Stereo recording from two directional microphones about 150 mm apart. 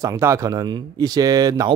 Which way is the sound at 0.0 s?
20° right (ahead or behind).